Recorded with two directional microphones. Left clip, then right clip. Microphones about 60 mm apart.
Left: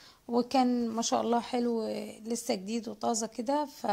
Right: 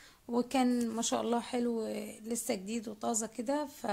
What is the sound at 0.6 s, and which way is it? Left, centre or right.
Speech, centre.